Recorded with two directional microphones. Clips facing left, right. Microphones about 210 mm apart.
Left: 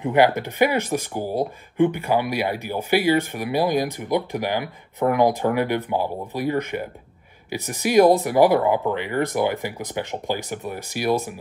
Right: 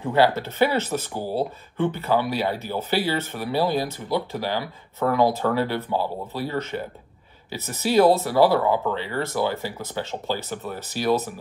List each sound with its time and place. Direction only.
0.0 s speech: 15° left (ahead or behind)